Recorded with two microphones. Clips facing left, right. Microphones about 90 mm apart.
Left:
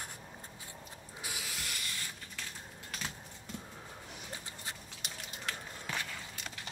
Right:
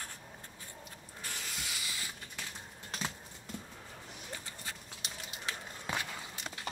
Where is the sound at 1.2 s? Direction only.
5° left (ahead or behind).